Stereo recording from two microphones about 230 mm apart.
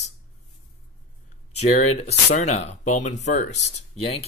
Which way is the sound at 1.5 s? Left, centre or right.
Left.